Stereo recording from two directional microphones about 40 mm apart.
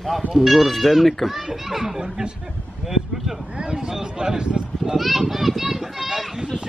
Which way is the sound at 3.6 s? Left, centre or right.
Centre.